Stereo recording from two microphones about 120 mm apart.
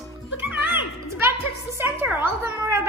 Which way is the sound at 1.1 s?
20° right (ahead or behind).